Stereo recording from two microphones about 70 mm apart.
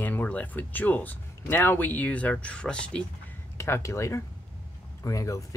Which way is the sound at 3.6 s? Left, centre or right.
Left.